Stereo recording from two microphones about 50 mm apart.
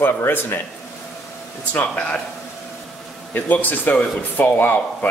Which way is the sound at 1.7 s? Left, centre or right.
Left.